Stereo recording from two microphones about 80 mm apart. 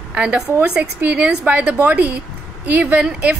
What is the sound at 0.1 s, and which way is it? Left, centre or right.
A woman's voice, centre.